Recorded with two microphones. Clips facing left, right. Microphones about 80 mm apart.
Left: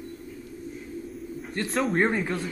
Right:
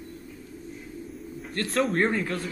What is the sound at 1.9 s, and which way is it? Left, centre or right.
Speech, centre.